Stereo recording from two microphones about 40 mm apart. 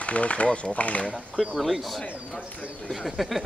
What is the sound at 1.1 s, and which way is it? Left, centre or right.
Speech, centre.